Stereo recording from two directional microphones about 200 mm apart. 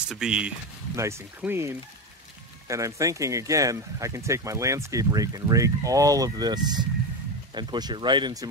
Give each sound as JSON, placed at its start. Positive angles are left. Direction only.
{"t": 0.1, "sound": "speech", "side_deg": -5}